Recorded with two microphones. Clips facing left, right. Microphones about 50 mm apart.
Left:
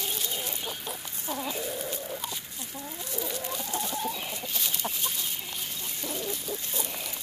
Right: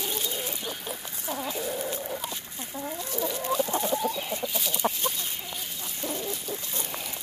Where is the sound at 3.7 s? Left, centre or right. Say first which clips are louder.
Right 5 dB; right.